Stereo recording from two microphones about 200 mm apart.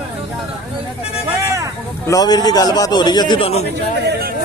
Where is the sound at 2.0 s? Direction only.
20° left (ahead or behind).